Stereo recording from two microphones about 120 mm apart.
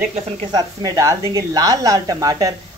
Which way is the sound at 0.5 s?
35° right (ahead or behind).